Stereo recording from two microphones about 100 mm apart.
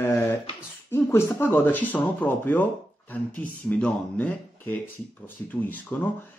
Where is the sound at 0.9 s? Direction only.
25° left (ahead or behind).